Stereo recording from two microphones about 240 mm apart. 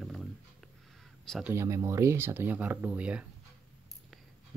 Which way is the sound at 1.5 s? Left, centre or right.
Centre.